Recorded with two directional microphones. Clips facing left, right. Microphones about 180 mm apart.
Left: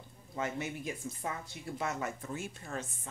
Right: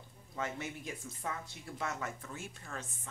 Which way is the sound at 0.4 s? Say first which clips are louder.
Left 3 dB; 10° left (ahead or behind).